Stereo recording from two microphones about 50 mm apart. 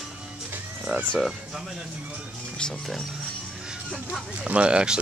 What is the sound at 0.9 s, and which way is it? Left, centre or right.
Speech, centre.